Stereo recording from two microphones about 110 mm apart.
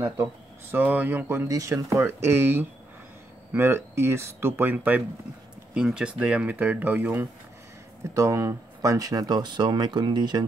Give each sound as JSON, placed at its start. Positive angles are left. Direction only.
{"t": 0.0, "sound": "speech", "side_deg": -25}
{"t": 1.5, "sound": "speech", "side_deg": -30}
{"t": 8.1, "sound": "speech", "side_deg": -30}